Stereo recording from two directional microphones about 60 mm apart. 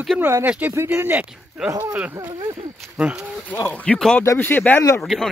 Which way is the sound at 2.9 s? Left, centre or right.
Centre.